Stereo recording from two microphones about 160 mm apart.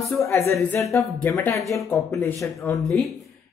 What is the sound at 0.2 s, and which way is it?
Speech, 15° left (ahead or behind).